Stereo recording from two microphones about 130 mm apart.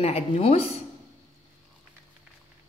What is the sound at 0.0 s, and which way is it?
Speech, 50° left (ahead or behind).